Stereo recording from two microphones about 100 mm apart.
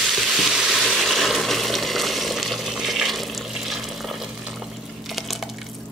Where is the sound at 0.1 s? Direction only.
Centre (ahead or behind).